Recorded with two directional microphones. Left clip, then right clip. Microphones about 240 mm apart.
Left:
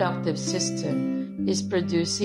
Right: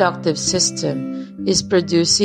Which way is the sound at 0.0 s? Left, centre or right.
Right.